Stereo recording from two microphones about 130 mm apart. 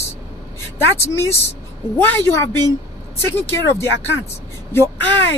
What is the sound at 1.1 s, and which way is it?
A woman's voice, 20° left (ahead or behind).